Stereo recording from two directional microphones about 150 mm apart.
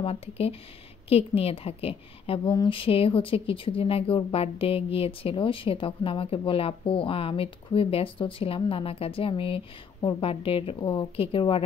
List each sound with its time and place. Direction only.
0.0 s speech: 40° left (ahead or behind)